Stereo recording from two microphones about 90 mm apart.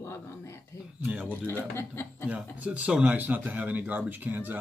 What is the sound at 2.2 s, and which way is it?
Speech, 15° right (ahead or behind).